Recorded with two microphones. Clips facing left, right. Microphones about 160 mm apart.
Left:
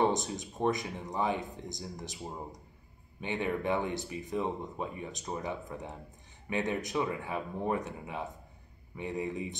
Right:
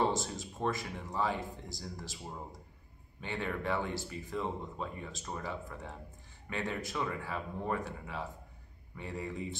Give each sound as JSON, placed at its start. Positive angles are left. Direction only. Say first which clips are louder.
{"t": 0.0, "sound": "speech", "louder": "left 3 dB", "side_deg": 20}